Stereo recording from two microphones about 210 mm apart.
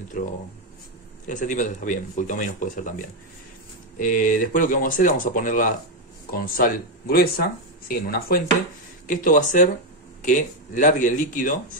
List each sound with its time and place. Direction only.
1.3 s speech: 40° left (ahead or behind)
4.0 s speech: 40° left (ahead or behind)